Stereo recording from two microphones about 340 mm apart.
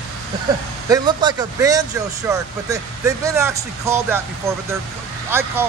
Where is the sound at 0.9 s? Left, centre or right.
Centre.